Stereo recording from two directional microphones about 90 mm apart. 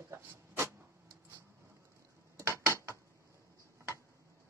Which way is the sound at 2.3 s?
35° right (ahead or behind).